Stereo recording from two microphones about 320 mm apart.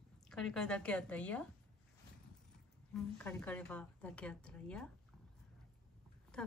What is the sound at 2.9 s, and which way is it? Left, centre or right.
A woman's voice, centre.